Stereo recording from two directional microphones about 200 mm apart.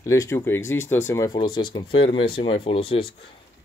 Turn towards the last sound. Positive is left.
turn(degrees=25)  # may be behind; listen again after turning